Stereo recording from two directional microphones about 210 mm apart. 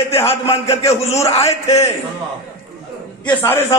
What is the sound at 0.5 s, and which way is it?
A man's voice, 30° left (ahead or behind).